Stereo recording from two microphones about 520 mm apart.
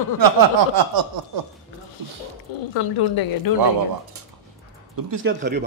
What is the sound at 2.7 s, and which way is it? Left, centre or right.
Speech, left.